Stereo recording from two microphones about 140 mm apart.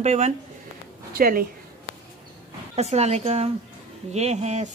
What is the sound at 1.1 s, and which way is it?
Speech, 90° right.